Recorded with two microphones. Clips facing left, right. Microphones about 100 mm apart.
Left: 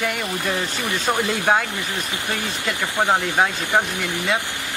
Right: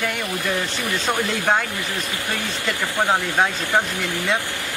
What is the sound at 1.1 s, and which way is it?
Speech, 5° left (ahead or behind).